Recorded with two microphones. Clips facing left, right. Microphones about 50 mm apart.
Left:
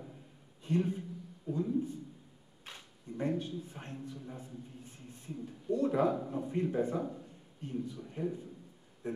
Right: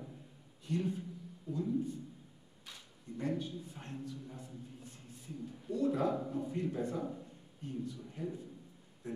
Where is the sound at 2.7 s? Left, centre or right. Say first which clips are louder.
Left 3 dB; left.